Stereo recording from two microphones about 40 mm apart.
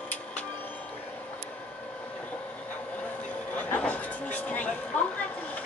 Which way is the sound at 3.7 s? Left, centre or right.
Left.